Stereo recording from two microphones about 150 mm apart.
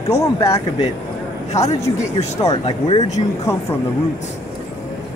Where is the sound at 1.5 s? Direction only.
50° left (ahead or behind).